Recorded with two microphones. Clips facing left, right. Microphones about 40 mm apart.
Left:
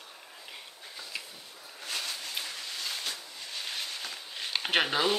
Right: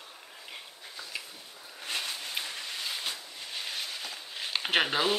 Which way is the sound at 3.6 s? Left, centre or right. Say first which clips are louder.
Left 1 dB; centre.